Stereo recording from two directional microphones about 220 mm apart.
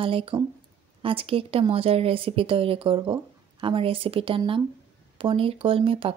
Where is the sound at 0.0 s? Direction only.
25° right (ahead or behind).